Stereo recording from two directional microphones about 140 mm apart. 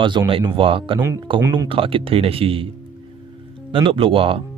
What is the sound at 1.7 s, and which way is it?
Speech, 40° right (ahead or behind).